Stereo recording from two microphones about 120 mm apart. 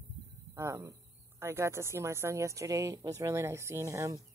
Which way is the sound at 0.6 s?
25° right (ahead or behind).